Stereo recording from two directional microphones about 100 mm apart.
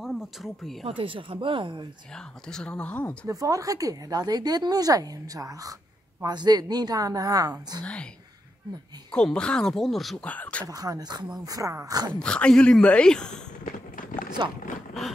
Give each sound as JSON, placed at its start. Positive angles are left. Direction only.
{"t": 0.0, "sound": "speech", "side_deg": 0}
{"t": 0.8, "sound": "speech", "side_deg": -60}
{"t": 2.4, "sound": "speech", "side_deg": 10}
{"t": 3.3, "sound": "a woman's voice", "side_deg": -35}
{"t": 7.8, "sound": "speech", "side_deg": 10}
{"t": 9.1, "sound": "speech", "side_deg": 10}
{"t": 10.2, "sound": "speech", "side_deg": 15}
{"t": 10.6, "sound": "a woman's voice", "side_deg": -40}
{"t": 12.1, "sound": "speech", "side_deg": 10}
{"t": 14.4, "sound": "speech", "side_deg": -50}